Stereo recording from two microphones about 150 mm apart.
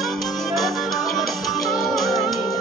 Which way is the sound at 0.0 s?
Centre (ahead or behind).